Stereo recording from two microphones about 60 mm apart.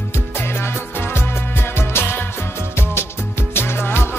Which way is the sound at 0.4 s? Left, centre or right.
Left.